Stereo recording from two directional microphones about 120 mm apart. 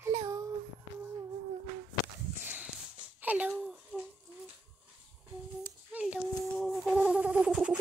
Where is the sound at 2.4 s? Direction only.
15° right (ahead or behind).